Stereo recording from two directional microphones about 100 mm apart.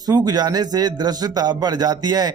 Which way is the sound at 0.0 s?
40° right (ahead or behind).